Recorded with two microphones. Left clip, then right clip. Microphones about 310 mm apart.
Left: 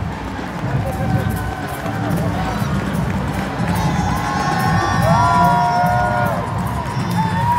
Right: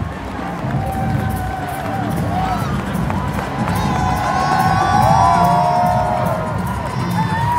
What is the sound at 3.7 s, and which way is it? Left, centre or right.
Music, centre.